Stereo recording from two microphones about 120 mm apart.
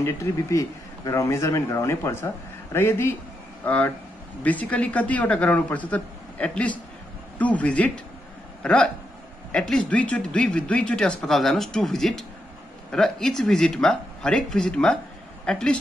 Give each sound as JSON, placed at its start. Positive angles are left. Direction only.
{"t": 0.0, "sound": "speech", "side_deg": 25}